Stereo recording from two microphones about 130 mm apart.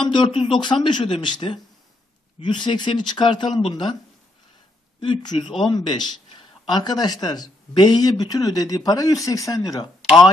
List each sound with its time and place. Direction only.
0.0 s speech: 40° left (ahead or behind)
5.0 s speech: 35° left (ahead or behind)